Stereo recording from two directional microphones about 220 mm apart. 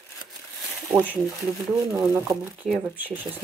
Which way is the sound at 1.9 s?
15° right (ahead or behind).